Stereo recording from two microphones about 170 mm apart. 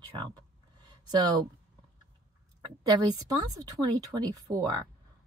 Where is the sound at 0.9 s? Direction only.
25° right (ahead or behind).